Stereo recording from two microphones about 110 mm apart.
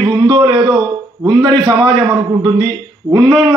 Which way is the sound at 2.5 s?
45° right (ahead or behind).